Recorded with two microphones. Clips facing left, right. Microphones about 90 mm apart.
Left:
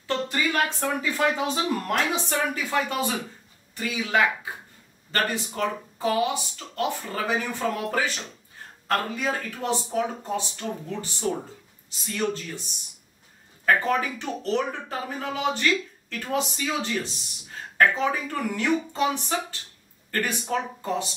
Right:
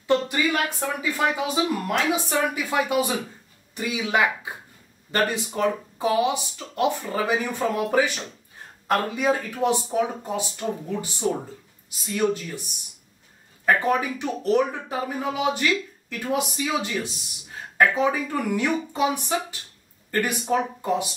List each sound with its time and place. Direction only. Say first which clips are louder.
0.0 s speech: right 4 dB; 15° right (ahead or behind)
13.7 s speech: right 1 dB; 15° right (ahead or behind)